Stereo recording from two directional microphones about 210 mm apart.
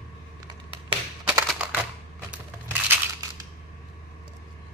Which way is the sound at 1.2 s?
5° right (ahead or behind).